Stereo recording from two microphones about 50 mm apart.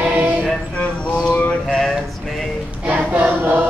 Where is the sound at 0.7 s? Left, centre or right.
Left.